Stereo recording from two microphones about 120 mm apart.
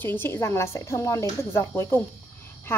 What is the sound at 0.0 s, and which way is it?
A woman's voice, 15° left (ahead or behind).